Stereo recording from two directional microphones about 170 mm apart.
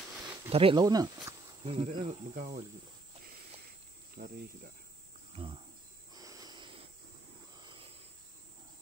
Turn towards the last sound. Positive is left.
turn(degrees=-30)  # may be behind; listen again after turning